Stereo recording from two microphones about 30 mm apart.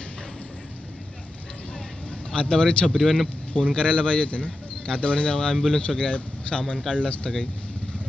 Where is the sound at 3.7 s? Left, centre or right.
Left.